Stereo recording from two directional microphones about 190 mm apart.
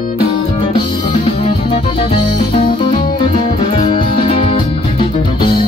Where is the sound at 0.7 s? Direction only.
25° left (ahead or behind).